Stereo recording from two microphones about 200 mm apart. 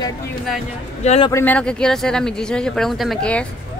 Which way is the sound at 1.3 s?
10° left (ahead or behind).